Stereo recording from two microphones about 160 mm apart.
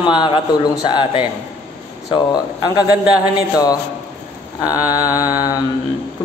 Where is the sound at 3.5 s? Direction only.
25° left (ahead or behind).